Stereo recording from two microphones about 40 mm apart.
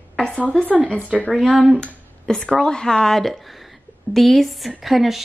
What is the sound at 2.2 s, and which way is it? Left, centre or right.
A woman's voice, centre.